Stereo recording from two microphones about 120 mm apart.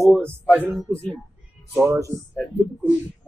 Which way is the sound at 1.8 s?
25° right (ahead or behind).